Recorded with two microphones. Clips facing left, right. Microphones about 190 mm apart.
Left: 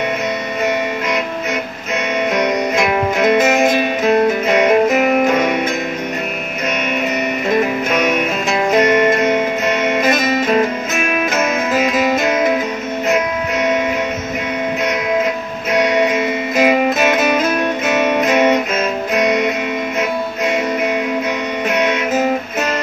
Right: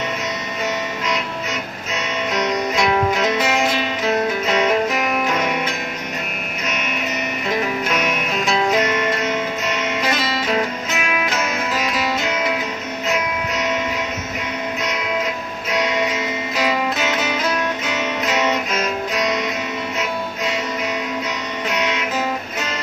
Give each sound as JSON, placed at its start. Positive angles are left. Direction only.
{"t": 2.3, "sound": "music", "side_deg": 50}
{"t": 8.7, "sound": "music", "side_deg": 55}
{"t": 15.8, "sound": "music", "side_deg": 55}
{"t": 21.7, "sound": "music", "side_deg": 55}